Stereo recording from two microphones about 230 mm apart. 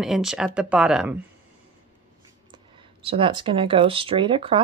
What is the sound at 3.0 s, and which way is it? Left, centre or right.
Speech, right.